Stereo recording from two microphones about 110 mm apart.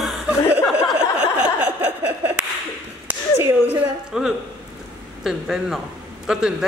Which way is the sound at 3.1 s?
20° right (ahead or behind).